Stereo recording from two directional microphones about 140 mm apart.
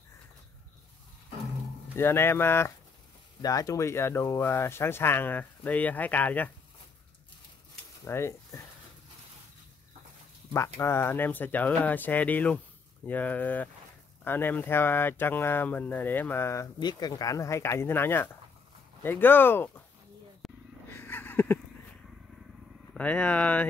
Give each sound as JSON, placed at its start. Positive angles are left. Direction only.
{"t": 2.0, "sound": "speech", "side_deg": 15}
{"t": 8.0, "sound": "speech", "side_deg": 20}
{"t": 10.5, "sound": "speech", "side_deg": 20}
{"t": 20.4, "sound": "wild animals", "side_deg": 0}
{"t": 20.9, "sound": "a sound", "side_deg": 15}
{"t": 22.9, "sound": "speech", "side_deg": 10}